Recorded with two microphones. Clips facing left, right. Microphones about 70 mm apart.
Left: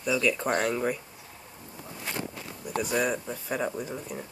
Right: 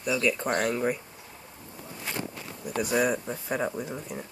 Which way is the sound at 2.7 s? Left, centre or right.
Centre.